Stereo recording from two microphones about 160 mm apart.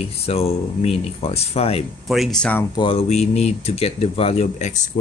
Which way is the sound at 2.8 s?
35° left (ahead or behind).